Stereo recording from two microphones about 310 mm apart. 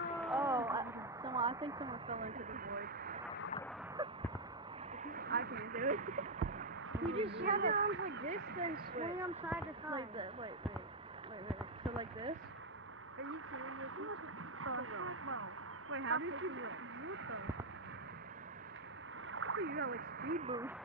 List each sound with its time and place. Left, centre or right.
0.2 s a sound: centre; by 3.2 s right
4.0 s speech: centre
5.0 s speech: right
6.9 s a sound: centre
7.3 s speech: right
9.3 s speech: centre
11.4 s a sound: centre
13.2 s a woman's voice: right
19.3 s speech: right
20.4 s speech: centre